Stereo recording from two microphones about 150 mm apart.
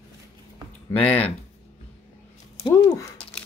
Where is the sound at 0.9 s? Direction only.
10° left (ahead or behind).